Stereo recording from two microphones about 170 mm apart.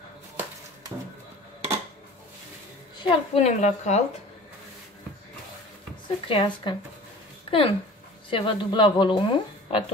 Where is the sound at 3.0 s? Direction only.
40° left (ahead or behind).